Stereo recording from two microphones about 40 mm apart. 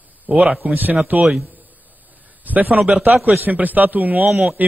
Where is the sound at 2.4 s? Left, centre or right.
Right.